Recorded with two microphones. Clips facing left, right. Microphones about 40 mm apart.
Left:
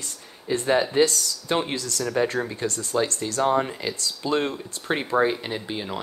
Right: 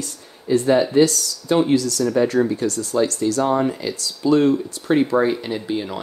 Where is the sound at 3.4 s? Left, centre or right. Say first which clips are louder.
Right 1 dB; left.